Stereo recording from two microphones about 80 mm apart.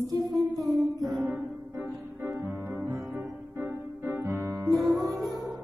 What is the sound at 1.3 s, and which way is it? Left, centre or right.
Music, right.